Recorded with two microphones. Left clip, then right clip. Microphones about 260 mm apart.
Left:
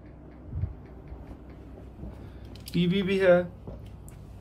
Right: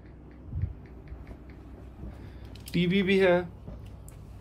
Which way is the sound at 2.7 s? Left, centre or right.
Centre.